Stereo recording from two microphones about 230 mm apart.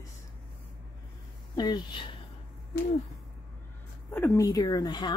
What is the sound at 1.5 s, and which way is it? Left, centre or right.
Speech, centre.